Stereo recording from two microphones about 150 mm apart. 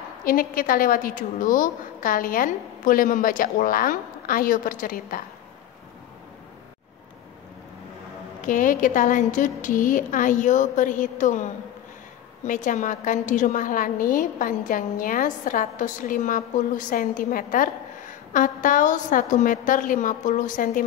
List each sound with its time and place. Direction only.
0.2 s a woman's voice: 70° left (ahead or behind)
8.4 s a woman's voice: 60° left (ahead or behind)